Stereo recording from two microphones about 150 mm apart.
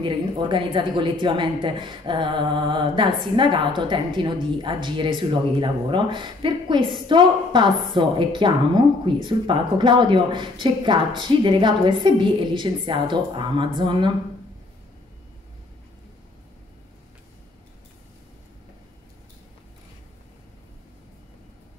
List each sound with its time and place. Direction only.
0.0 s a woman's voice: 35° right (ahead or behind)